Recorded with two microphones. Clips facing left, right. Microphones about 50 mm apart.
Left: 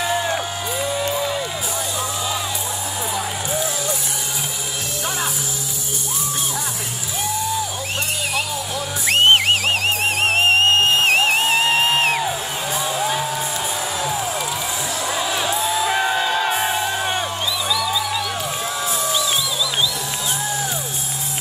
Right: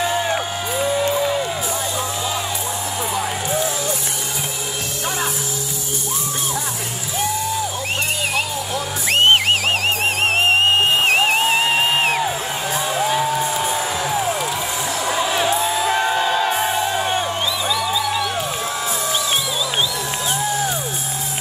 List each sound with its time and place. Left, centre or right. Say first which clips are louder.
0.0 s music: right 1 dB; centre
9.1 s music: even; centre
12.8 s music: right 4 dB; centre
17.6 s music: even; right